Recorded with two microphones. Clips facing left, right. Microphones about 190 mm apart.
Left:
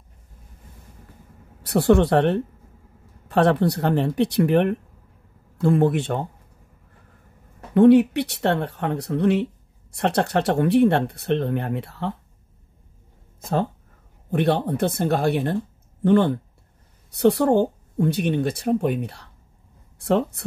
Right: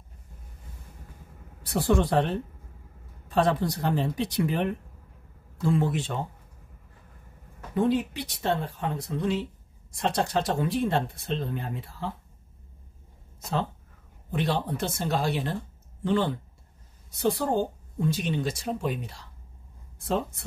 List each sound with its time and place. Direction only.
1.6 s speech: 65° left (ahead or behind)
7.7 s speech: 70° left (ahead or behind)
13.4 s speech: 50° left (ahead or behind); by 20.4 s 70° left (ahead or behind)